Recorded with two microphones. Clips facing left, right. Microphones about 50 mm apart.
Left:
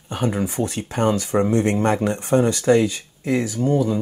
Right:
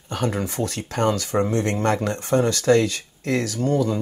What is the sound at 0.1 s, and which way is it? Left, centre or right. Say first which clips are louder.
Speech: left 2 dB; centre.